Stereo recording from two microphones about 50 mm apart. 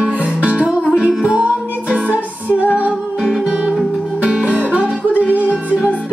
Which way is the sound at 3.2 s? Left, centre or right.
Centre.